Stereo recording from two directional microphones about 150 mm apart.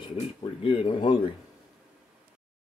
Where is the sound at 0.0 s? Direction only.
35° left (ahead or behind).